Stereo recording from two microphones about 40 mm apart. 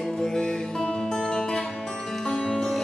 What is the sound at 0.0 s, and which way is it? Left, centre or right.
Music, centre.